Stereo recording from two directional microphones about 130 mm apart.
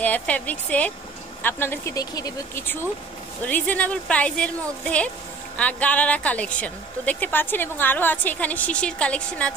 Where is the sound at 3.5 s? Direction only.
10° left (ahead or behind).